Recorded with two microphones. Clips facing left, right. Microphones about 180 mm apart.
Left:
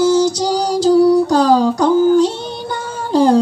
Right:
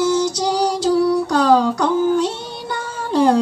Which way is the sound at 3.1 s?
35° left (ahead or behind).